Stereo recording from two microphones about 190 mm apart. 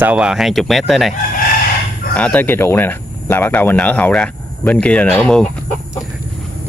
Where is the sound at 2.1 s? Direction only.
5° left (ahead or behind).